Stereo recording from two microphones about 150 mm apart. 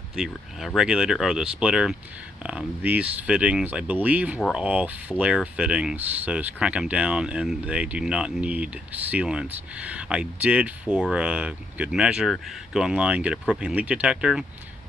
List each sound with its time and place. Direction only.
0.1 s speech: centre (ahead or behind)